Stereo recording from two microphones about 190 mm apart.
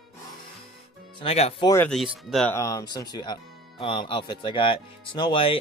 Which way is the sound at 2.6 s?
15° left (ahead or behind).